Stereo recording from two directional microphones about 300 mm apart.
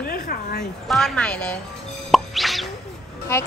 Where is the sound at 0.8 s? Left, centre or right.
Centre.